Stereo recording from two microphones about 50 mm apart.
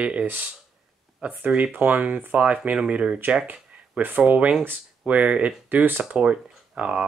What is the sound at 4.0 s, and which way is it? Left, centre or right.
Speech, right.